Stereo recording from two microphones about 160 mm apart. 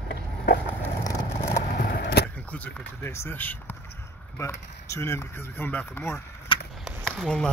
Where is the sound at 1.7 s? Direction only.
90° left.